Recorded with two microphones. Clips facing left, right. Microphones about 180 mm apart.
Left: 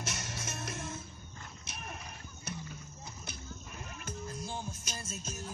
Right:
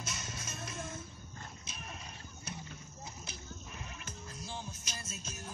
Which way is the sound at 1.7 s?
60° left (ahead or behind).